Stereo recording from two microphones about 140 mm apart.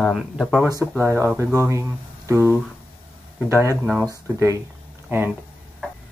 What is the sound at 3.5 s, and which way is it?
Speech, 20° right (ahead or behind).